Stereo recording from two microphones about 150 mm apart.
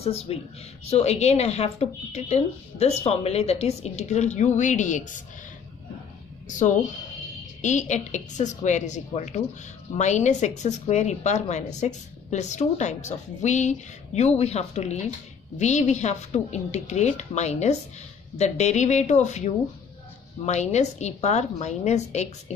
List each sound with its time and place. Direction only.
0.0 s speech: 45° left (ahead or behind)
6.4 s speech: 55° left (ahead or behind)